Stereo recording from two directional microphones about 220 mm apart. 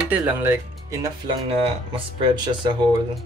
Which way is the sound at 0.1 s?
10° right (ahead or behind).